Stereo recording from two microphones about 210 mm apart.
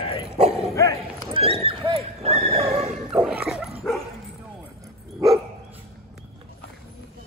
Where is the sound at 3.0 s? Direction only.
Centre (ahead or behind).